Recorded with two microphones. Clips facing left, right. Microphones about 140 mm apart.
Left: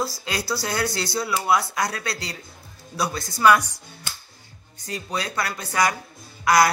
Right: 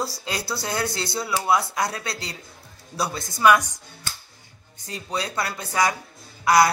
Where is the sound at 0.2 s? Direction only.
25° right (ahead or behind).